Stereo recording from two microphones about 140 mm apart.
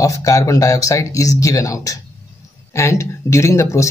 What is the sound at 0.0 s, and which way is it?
Speech, 25° left (ahead or behind).